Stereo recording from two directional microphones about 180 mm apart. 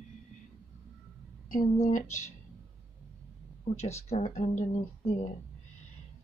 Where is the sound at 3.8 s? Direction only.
35° left (ahead or behind).